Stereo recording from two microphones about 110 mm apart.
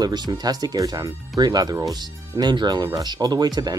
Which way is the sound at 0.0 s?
40° right (ahead or behind).